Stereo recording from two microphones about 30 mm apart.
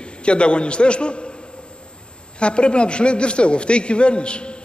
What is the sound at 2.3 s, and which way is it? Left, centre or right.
A man's voice, left.